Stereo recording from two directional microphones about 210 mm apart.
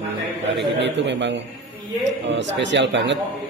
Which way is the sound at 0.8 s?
60° right (ahead or behind).